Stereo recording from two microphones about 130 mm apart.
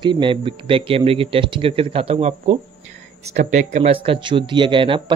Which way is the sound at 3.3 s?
65° right (ahead or behind).